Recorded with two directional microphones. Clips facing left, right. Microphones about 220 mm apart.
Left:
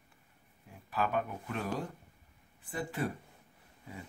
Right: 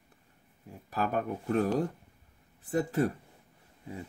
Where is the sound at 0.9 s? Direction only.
40° right (ahead or behind).